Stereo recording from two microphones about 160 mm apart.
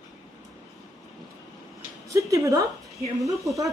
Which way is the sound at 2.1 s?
20° right (ahead or behind).